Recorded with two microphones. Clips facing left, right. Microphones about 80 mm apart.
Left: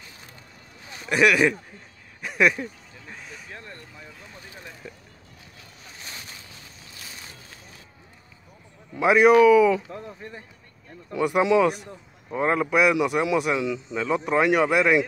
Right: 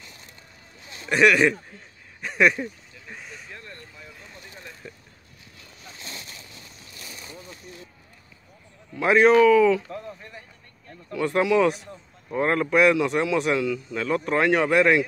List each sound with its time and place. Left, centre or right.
1.0 s speech: centre
2.2 s a sound: centre
2.6 s vehicle: centre
3.5 s a sound: left
4.8 s vehicle: centre
8.9 s speech: centre
13.6 s speech: centre